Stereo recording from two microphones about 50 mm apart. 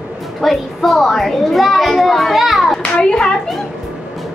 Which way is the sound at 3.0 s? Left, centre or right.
Centre.